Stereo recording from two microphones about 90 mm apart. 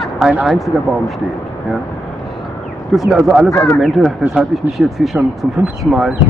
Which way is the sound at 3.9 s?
10° right (ahead or behind).